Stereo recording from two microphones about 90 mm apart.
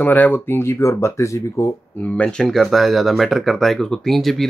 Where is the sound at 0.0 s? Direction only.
20° left (ahead or behind); by 1.7 s 35° left (ahead or behind).